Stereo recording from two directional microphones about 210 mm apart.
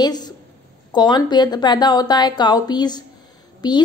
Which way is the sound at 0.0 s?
20° left (ahead or behind).